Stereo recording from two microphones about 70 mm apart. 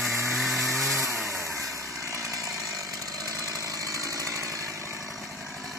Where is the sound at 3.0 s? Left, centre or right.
Right.